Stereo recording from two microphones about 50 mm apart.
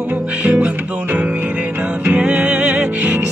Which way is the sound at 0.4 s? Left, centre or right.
Right.